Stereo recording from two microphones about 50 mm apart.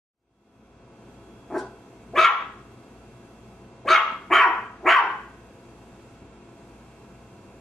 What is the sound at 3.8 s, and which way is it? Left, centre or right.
Dog, centre.